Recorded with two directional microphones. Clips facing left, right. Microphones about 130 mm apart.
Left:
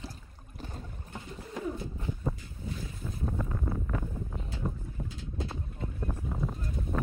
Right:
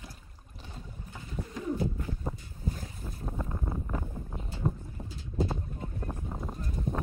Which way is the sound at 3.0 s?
15° right (ahead or behind).